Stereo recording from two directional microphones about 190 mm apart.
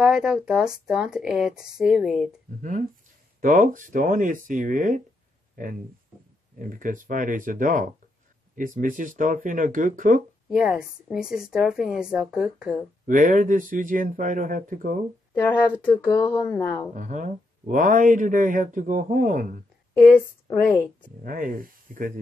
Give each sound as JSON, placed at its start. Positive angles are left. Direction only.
{"t": 0.0, "sound": "speech", "side_deg": -5}
{"t": 2.6, "sound": "speech", "side_deg": -40}
{"t": 10.5, "sound": "speech", "side_deg": -5}
{"t": 13.0, "sound": "speech", "side_deg": -45}
{"t": 15.3, "sound": "speech", "side_deg": 10}
{"t": 16.0, "sound": "speech", "side_deg": 25}
{"t": 16.9, "sound": "speech", "side_deg": -40}
{"t": 20.6, "sound": "speech", "side_deg": 10}
{"t": 21.2, "sound": "speech", "side_deg": -45}